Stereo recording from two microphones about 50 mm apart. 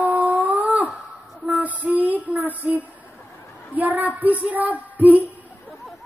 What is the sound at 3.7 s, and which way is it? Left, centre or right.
Child singing, right.